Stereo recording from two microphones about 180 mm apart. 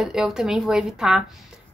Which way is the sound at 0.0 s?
5° right (ahead or behind).